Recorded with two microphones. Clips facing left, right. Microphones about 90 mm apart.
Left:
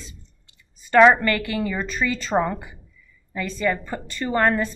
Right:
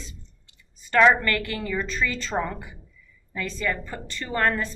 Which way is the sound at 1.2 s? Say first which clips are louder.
Left 4 dB; 15° left (ahead or behind).